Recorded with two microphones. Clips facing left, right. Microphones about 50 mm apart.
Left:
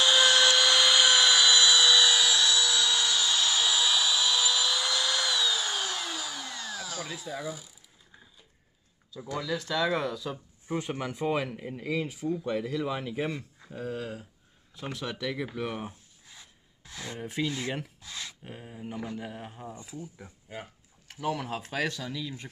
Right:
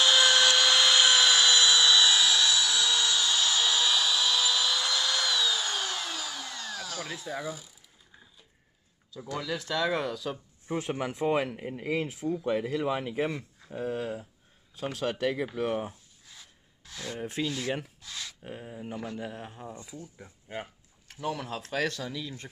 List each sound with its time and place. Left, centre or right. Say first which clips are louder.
0.0 s tools: even; centre
9.1 s speech: left 1 dB; centre
9.4 s speech: left 1 dB; centre
15.0 s speech: right 5 dB; right
16.3 s a sound: even; centre
17.5 s speech: right 1 dB; left
18.0 s a sound: even; left
18.5 s speech: right 2 dB; centre
18.9 s speech: even; centre
19.4 s speech: even; centre
21.2 s speech: left 2 dB; centre